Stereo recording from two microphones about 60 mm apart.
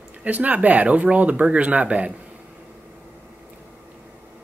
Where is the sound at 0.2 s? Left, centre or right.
Right.